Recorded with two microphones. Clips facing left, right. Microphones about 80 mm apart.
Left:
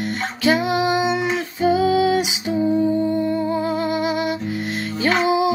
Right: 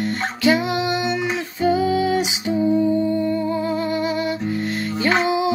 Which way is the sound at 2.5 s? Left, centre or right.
Left.